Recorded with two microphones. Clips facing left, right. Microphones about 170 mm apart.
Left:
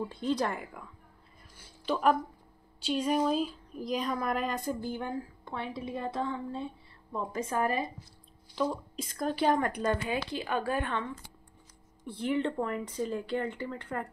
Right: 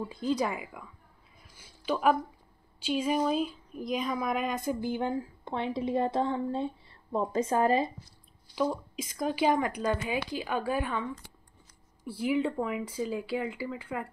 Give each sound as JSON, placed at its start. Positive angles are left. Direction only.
{"t": 0.0, "sound": "speech", "side_deg": -5}
{"t": 1.9, "sound": "speech", "side_deg": -5}
{"t": 4.6, "sound": "a woman's voice", "side_deg": -15}
{"t": 8.5, "sound": "speech", "side_deg": -5}